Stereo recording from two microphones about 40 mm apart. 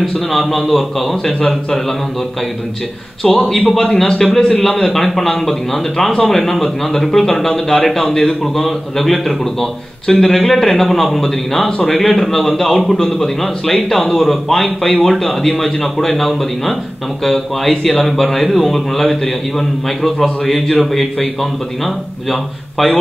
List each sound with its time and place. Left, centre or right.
0.0 s a man's voice: centre
3.3 s a man's voice: centre
10.0 s a man's voice: centre